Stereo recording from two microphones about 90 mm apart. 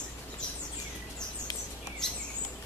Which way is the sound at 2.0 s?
5° left (ahead or behind).